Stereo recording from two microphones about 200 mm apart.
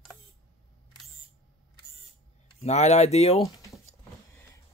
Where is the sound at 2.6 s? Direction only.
35° left (ahead or behind).